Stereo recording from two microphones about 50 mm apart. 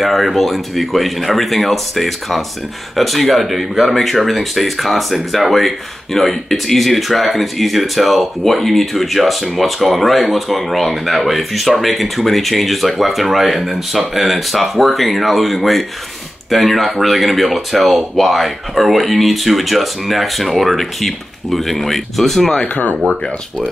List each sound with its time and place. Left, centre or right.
0.0 s speech: centre